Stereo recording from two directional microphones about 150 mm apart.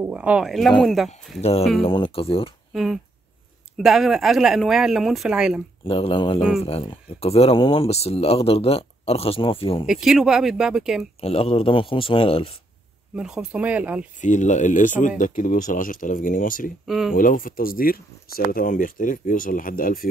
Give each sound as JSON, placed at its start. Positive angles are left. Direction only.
{"t": 0.0, "sound": "speech", "side_deg": -10}
{"t": 1.4, "sound": "speech", "side_deg": 40}
{"t": 2.7, "sound": "speech", "side_deg": 0}
{"t": 5.9, "sound": "speech", "side_deg": 40}
{"t": 9.8, "sound": "speech", "side_deg": -5}
{"t": 11.1, "sound": "speech", "side_deg": 40}
{"t": 13.1, "sound": "speech", "side_deg": -5}
{"t": 14.2, "sound": "speech", "side_deg": 55}
{"t": 16.8, "sound": "speech", "side_deg": 0}
{"t": 17.1, "sound": "speech", "side_deg": 65}